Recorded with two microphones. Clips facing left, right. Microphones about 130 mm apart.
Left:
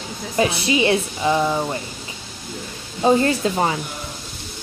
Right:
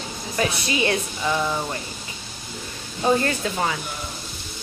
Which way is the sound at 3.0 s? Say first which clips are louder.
Left 4 dB; 25° left (ahead or behind).